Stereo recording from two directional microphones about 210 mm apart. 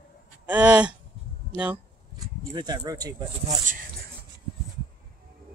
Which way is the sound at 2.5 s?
20° right (ahead or behind).